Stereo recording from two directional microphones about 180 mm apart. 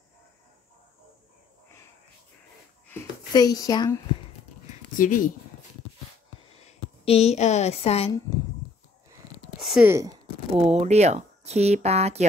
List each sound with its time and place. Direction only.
3.3 s speech: 20° left (ahead or behind)
4.9 s speech: 50° left (ahead or behind)
6.5 s speech: 35° left (ahead or behind)
9.6 s a sound: centre (ahead or behind)
9.8 s speech: 15° right (ahead or behind)
10.5 s speech: 30° right (ahead or behind)